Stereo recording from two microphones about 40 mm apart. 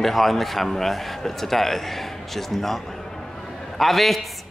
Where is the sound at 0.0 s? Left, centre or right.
Centre.